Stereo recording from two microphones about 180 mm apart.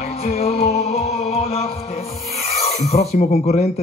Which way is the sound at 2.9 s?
45° left (ahead or behind).